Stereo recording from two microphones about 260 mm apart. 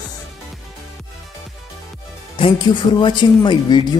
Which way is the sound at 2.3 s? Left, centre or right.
Centre.